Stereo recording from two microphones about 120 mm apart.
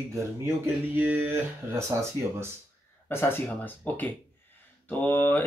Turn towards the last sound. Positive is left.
turn(degrees=15)  # may be behind; listen again after turning